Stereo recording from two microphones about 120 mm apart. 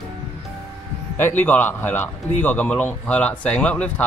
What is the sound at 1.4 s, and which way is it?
Speech, 15° left (ahead or behind).